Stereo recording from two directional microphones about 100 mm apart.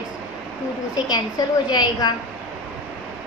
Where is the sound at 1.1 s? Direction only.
45° left (ahead or behind).